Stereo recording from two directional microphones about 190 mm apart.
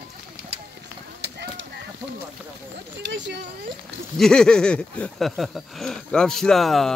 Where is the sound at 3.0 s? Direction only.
70° right (ahead or behind).